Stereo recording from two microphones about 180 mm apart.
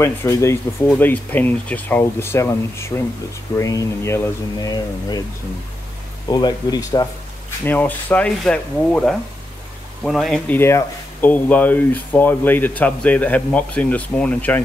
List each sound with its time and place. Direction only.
0.0 s speech: 15° left (ahead or behind)
6.2 s speech: 25° left (ahead or behind)
7.6 s speech: 10° left (ahead or behind)
10.6 s speech: 15° left (ahead or behind)